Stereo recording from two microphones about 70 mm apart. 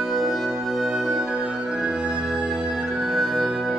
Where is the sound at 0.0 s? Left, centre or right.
Centre.